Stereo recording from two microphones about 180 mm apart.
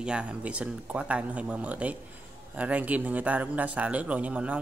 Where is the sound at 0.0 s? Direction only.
5° right (ahead or behind).